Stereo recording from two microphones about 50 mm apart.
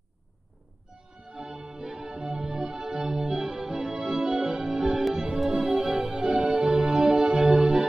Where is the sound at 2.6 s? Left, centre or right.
Right.